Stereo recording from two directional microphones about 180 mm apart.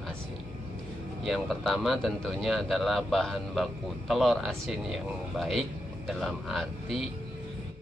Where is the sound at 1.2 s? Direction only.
Centre (ahead or behind).